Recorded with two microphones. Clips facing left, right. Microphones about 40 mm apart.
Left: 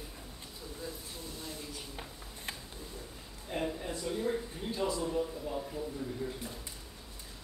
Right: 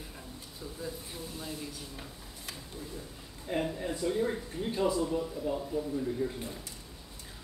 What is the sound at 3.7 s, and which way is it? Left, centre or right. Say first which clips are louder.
A man's voice: right 5 dB; centre.